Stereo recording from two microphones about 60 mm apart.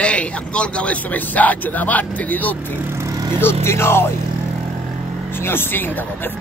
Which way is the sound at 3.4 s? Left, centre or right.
Left.